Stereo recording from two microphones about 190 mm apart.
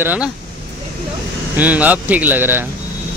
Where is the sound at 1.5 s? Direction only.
10° right (ahead or behind).